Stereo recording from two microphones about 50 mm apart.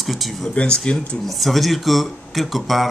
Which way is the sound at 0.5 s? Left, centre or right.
Left.